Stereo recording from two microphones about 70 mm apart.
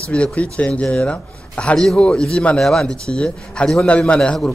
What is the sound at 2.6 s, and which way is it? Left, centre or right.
A man's voice, centre.